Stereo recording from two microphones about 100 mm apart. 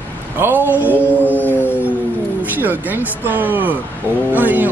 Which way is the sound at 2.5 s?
20° right (ahead or behind).